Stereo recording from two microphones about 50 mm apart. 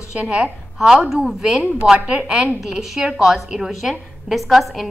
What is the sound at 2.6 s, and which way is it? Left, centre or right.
A woman's voice, centre.